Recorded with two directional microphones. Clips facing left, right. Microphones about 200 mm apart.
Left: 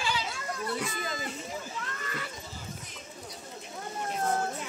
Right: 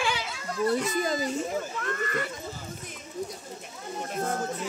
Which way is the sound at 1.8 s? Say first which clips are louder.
Right 8 dB; 55° right (ahead or behind).